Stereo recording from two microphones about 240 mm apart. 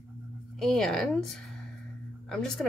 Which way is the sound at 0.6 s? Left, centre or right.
Centre.